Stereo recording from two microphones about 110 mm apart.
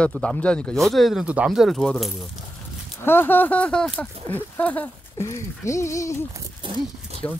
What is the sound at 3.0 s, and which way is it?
Speech, 20° left (ahead or behind).